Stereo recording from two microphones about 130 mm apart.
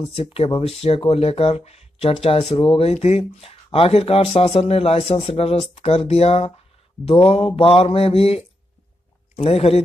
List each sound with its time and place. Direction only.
0.1 s speech: 50° left (ahead or behind)